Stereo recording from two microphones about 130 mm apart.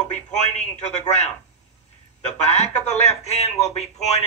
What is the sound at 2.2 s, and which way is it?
A man's voice, 55° left (ahead or behind).